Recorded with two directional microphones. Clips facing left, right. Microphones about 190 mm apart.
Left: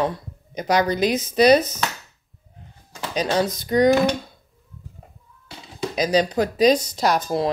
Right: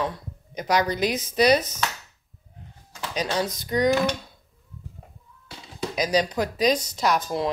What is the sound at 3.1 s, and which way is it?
Speech, 25° left (ahead or behind).